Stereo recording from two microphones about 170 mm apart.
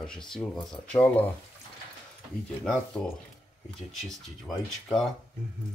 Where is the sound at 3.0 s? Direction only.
5° left (ahead or behind).